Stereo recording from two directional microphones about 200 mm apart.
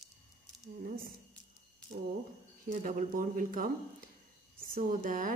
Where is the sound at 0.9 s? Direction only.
45° right (ahead or behind).